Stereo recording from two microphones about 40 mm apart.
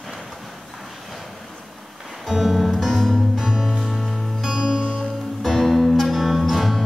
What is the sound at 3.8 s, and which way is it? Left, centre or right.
Music, centre.